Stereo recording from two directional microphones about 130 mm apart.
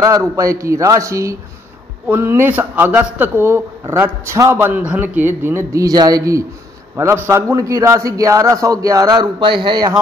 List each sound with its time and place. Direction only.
0.0 s a man's voice: 25° right (ahead or behind)